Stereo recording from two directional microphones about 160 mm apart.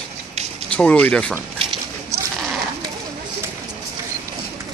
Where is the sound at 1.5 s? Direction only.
35° right (ahead or behind).